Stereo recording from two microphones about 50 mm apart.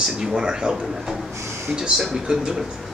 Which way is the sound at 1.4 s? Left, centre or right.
Right.